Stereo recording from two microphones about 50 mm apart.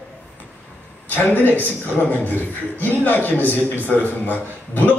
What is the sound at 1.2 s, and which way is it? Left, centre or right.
A man's voice, left.